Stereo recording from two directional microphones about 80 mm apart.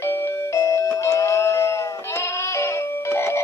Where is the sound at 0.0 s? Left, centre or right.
Left.